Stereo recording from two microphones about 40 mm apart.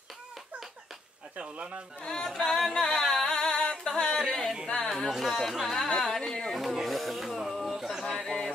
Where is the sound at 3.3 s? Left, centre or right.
Centre.